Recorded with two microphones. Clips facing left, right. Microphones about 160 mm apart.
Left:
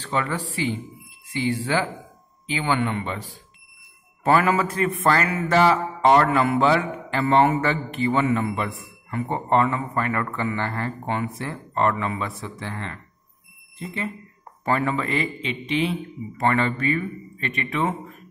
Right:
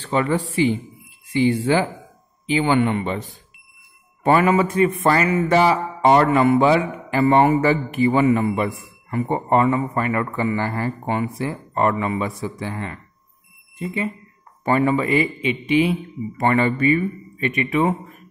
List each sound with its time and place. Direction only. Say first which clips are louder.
0.0 s a man's voice: right 6 dB; 20° right (ahead or behind)
4.2 s a man's voice: right 3 dB; 5° right (ahead or behind)